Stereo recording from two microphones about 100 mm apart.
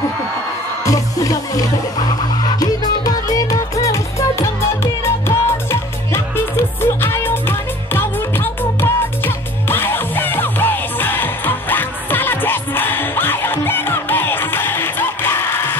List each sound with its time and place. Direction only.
0.8 s music: 35° left (ahead or behind)